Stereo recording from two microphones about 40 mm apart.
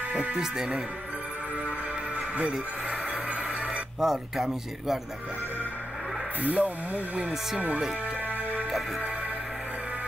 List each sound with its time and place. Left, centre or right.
2.1 s music: right
2.9 s a sound: right
4.0 s speech: centre
6.4 s speech: right
8.3 s music: right